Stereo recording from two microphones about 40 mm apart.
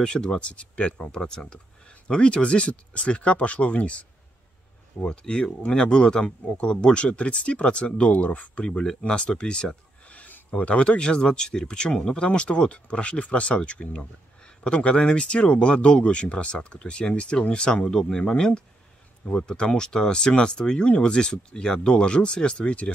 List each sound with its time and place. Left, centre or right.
0.0 s speech: centre
0.5 s speech: left
5.0 s speech: left
8.1 s speech: left
8.6 s speech: left
10.0 s a sound: left
10.5 s speech: left; by 18.2 s centre
19.2 s speech: left